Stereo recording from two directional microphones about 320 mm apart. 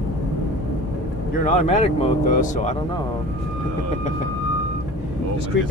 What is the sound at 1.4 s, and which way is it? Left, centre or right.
Speech, left.